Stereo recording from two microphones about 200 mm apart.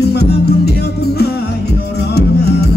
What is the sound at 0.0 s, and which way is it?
Music, 55° left (ahead or behind).